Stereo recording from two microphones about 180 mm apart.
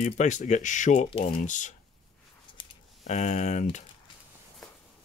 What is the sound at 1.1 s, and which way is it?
Speech, 30° left (ahead or behind).